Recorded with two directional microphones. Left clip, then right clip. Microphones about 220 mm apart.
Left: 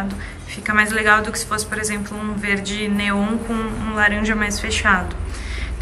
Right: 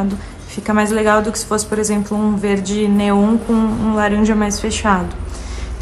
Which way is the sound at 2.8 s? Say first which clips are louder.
Right 6 dB; 20° right (ahead or behind).